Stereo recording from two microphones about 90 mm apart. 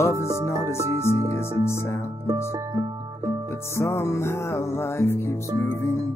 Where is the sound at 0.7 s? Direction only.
30° right (ahead or behind).